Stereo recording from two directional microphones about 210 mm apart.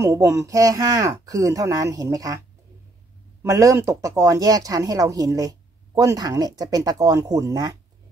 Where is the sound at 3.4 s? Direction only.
15° right (ahead or behind).